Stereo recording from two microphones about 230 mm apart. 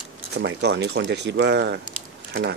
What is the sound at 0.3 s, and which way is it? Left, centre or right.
Speech, right.